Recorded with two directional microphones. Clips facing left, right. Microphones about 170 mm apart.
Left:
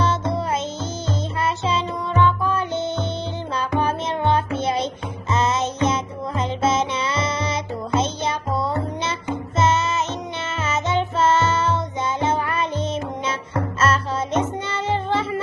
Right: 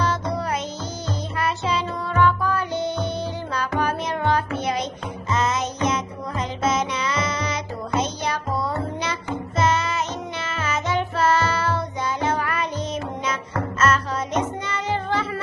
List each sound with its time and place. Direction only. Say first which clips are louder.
0.0 s music: left 2 dB; 25° left (ahead or behind)